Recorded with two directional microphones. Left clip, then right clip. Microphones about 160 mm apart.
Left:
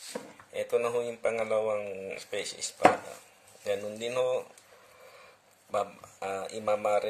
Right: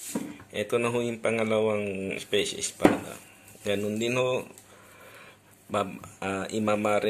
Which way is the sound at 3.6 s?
15° left (ahead or behind).